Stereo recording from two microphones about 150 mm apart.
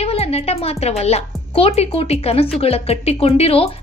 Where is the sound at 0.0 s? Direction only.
45° left (ahead or behind).